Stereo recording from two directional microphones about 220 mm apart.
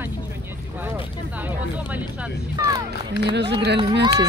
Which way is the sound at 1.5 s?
5° right (ahead or behind).